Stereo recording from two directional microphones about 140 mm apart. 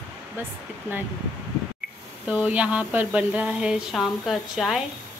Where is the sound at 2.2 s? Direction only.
10° right (ahead or behind).